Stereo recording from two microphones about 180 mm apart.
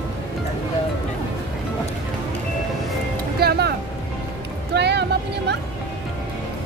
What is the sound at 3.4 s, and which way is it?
Speech, 60° right (ahead or behind).